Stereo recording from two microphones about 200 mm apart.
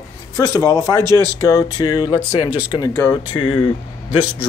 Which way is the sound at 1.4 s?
15° left (ahead or behind).